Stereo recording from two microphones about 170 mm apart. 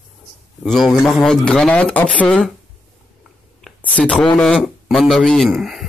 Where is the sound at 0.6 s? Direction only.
Centre (ahead or behind).